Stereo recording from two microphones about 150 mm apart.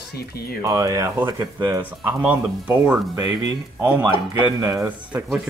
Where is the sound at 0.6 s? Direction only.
25° right (ahead or behind).